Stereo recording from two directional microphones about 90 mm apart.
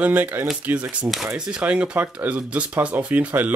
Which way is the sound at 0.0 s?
15° right (ahead or behind).